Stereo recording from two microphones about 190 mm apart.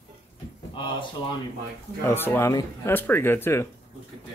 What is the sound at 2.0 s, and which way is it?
Speech, 10° left (ahead or behind).